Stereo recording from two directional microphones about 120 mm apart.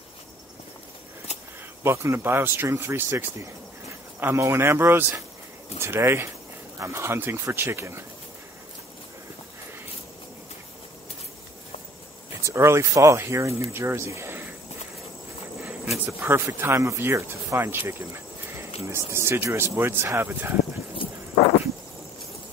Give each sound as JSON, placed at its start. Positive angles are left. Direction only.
{"t": 1.8, "sound": "speech", "side_deg": -20}
{"t": 12.4, "sound": "speech", "side_deg": -25}
{"t": 16.1, "sound": "speech", "side_deg": -20}